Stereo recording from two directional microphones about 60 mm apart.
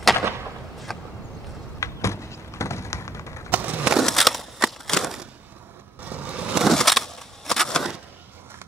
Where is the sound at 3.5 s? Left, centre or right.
Right.